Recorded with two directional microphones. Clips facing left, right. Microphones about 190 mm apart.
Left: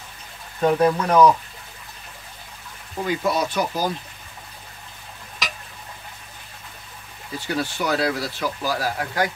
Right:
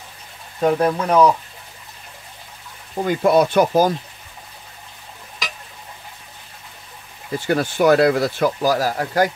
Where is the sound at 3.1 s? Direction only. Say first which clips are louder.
Right 7 dB; 50° right (ahead or behind).